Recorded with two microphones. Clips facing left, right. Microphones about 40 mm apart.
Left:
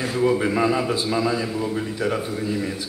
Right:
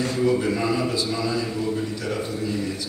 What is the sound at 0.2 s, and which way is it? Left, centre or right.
A man's voice, left.